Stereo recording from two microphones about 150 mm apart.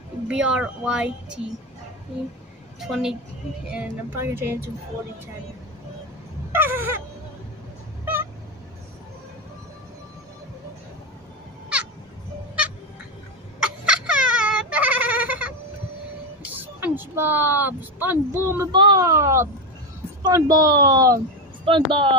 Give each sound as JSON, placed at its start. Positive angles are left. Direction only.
{"t": 0.3, "sound": "speech", "side_deg": -5}
{"t": 2.9, "sound": "a woman's voice", "side_deg": -5}
{"t": 3.7, "sound": "speech", "side_deg": -15}
{"t": 6.5, "sound": "a sound", "side_deg": -15}
{"t": 8.0, "sound": "vehicle", "side_deg": -15}
{"t": 13.6, "sound": "goat", "side_deg": -5}
{"t": 16.5, "sound": "a sound", "side_deg": -10}
{"t": 18.7, "sound": "a sound", "side_deg": -30}
{"t": 20.2, "sound": "speech", "side_deg": -25}